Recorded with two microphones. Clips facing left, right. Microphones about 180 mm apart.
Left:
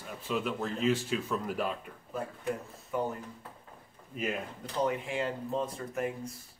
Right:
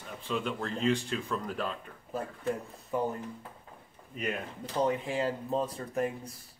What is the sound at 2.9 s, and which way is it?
Speech, 30° right (ahead or behind).